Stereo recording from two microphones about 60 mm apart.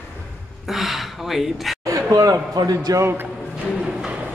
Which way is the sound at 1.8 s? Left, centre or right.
Right.